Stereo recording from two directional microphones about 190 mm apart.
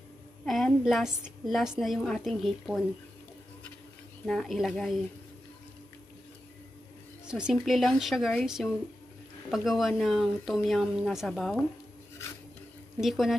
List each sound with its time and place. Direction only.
0.5 s speech: centre (ahead or behind)
4.3 s speech: centre (ahead or behind)
7.2 s speech: 5° right (ahead or behind)
13.0 s speech: centre (ahead or behind)